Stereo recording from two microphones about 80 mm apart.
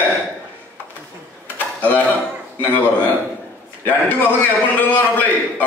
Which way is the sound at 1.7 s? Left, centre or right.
Left.